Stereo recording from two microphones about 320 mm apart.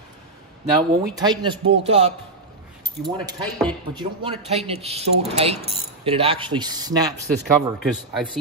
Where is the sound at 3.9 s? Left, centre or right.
Centre.